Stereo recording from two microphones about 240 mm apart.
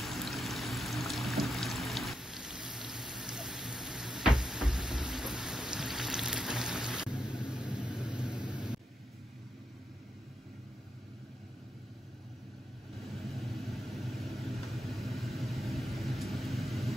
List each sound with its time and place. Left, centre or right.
0.0 s pour: centre
12.9 s vehicle: centre